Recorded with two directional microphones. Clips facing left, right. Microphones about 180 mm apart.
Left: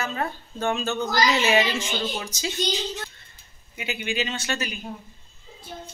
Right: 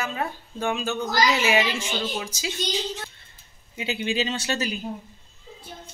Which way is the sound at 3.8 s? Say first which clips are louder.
Right 3 dB; 30° right (ahead or behind).